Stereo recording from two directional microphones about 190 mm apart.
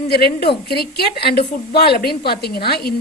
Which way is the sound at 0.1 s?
55° left (ahead or behind).